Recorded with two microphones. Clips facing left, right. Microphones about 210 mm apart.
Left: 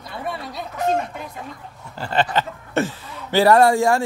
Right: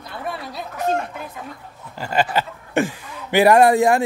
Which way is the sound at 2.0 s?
10° right (ahead or behind).